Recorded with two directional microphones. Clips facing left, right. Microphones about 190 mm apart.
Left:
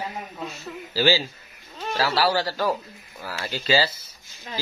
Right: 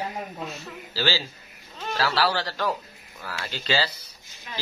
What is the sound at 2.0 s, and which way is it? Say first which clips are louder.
Speech: left 2 dB; 10° left (ahead or behind).